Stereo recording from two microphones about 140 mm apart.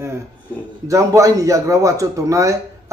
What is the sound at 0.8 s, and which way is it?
A man's voice, 20° right (ahead or behind).